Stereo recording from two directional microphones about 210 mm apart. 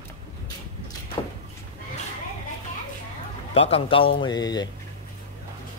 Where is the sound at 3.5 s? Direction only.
30° left (ahead or behind).